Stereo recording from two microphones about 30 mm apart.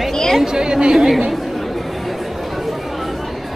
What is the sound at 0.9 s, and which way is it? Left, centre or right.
Speech, centre.